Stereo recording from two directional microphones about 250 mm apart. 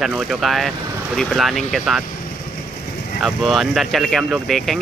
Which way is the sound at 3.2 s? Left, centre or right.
Centre.